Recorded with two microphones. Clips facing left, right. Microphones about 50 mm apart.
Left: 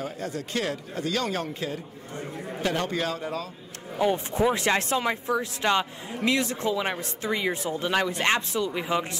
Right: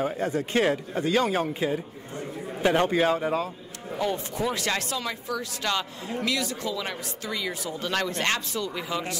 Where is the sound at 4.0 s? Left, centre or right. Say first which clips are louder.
Left 4 dB; left.